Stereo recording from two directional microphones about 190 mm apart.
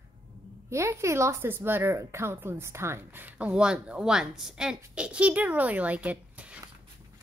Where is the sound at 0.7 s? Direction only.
15° right (ahead or behind).